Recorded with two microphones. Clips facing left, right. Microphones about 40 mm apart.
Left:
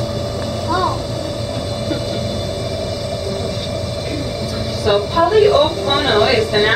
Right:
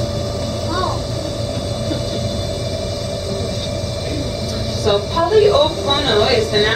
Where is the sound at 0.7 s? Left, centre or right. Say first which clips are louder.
Left 4 dB; centre.